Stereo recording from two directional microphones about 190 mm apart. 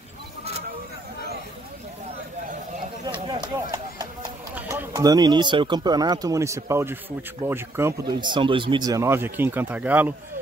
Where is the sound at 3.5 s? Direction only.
20° right (ahead or behind).